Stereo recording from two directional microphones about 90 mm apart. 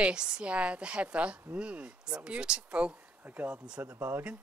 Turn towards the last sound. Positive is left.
turn(degrees=-20)  # may be behind; listen again after turning